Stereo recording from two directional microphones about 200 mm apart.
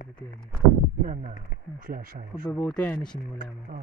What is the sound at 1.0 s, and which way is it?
Speech, 40° right (ahead or behind).